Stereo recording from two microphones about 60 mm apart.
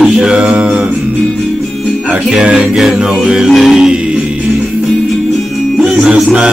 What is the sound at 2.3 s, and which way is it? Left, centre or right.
Music, centre.